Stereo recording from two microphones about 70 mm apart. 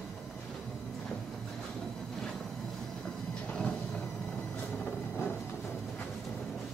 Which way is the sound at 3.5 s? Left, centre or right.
Centre.